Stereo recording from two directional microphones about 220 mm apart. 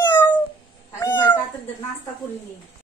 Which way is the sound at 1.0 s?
15° left (ahead or behind).